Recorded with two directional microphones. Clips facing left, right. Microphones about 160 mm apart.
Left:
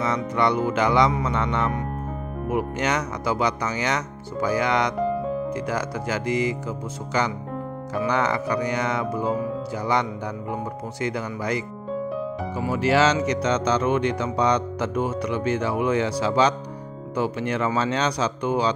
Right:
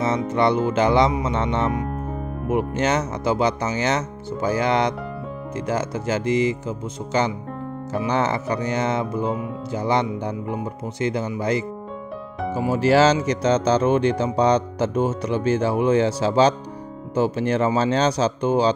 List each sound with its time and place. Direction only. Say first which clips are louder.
0.0 s speech: right 3 dB; 25° right (ahead or behind)
12.6 s speech: right 3 dB; 30° right (ahead or behind)